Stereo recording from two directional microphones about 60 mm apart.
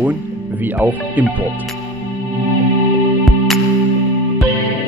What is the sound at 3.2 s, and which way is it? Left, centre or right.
Music, centre.